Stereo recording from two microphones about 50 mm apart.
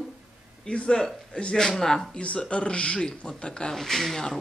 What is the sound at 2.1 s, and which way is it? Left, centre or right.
Speech, left.